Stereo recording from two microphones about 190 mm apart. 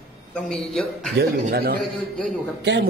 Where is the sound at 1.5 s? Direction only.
55° right (ahead or behind).